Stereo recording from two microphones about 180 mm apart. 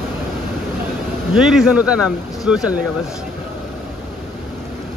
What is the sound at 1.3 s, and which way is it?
A man's voice, 5° right (ahead or behind).